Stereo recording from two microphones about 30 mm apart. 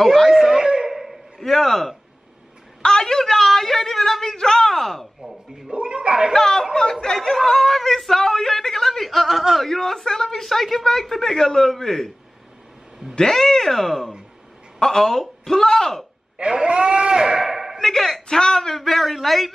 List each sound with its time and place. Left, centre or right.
0.3 s a sound: centre
0.6 s wail: right
1.4 s speech: centre
2.8 s speech: left; by 4.2 s centre
4.2 s speech: centre
5.7 s speech: right
6.3 s speech: centre
7.3 s a man's voice: centre
13.1 s speech: centre
14.8 s speech: centre
16.3 s speech: right; by 17.7 s centre
17.7 s speech: centre
18.3 s speech: left
18.8 s a man's voice: centre